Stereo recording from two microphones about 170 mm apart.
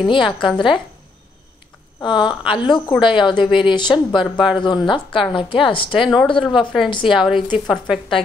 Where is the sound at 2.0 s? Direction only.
25° left (ahead or behind).